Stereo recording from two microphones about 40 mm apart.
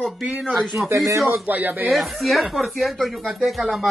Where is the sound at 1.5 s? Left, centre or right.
Right.